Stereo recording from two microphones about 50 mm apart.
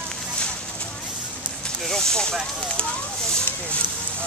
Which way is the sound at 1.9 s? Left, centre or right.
Centre.